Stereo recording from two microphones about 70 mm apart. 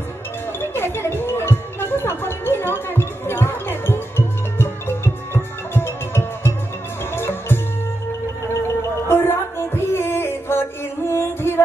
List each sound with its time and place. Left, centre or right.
0.6 s music: left
9.1 s a sound: left
11.1 s music: left